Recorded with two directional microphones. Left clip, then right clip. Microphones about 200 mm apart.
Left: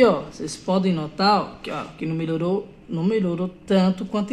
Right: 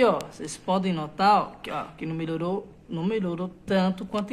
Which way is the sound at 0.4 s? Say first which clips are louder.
Left 3 dB; 10° right (ahead or behind).